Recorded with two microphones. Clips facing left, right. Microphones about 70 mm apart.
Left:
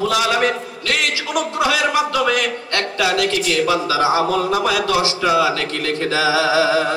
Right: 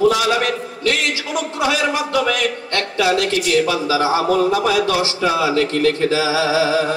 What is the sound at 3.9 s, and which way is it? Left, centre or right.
Speech, left.